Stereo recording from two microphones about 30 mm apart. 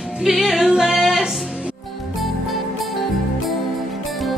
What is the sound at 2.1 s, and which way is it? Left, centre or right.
Music, centre.